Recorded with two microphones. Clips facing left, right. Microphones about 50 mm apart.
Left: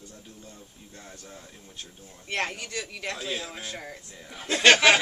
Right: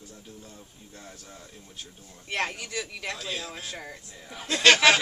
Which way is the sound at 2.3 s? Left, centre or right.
Centre.